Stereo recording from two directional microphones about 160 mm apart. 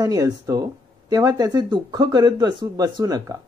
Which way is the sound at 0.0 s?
20° right (ahead or behind).